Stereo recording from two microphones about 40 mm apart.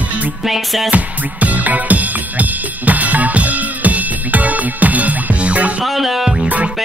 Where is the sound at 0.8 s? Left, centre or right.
Right.